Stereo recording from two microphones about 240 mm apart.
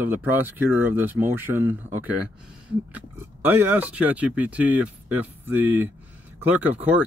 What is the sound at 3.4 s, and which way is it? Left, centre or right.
Speech, centre.